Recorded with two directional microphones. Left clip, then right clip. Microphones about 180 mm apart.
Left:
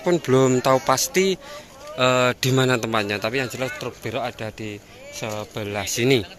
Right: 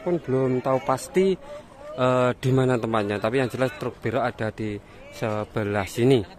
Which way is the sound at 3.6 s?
35° right (ahead or behind).